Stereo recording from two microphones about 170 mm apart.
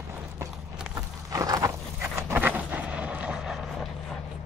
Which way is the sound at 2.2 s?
10° right (ahead or behind).